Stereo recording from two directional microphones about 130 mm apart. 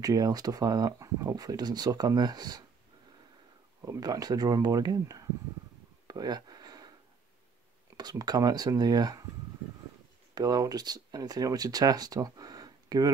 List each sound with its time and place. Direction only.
0.0 s speech: 30° right (ahead or behind)
3.8 s speech: 25° right (ahead or behind)
6.0 s a sound: 30° right (ahead or behind)
8.0 s speech: 30° right (ahead or behind)
10.3 s speech: 30° right (ahead or behind)